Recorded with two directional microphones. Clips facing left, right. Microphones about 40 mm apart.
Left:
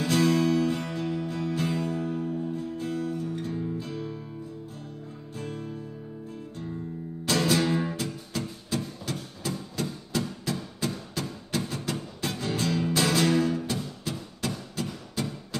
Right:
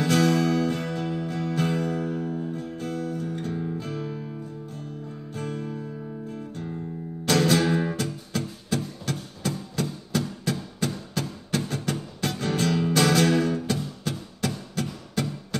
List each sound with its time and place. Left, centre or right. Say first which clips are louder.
0.0 s music: right 2 dB; right
5.3 s music: right 4 dB; right
7.2 s music: right 3 dB; right